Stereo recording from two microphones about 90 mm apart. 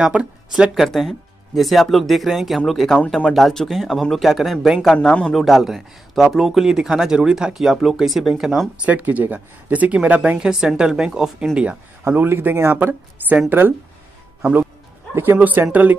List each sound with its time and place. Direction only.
0.0 s speech: 10° right (ahead or behind)
10.5 s speech: 5° right (ahead or behind)
12.0 s speech: 20° right (ahead or behind)